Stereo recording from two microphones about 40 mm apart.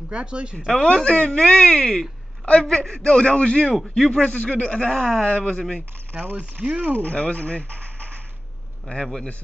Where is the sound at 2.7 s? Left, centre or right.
Centre; by 4.9 s left.